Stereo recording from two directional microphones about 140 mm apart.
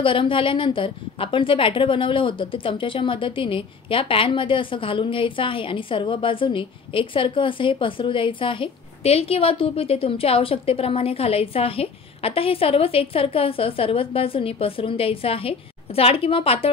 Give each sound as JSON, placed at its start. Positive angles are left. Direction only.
{"t": 0.0, "sound": "a woman's voice", "side_deg": 40}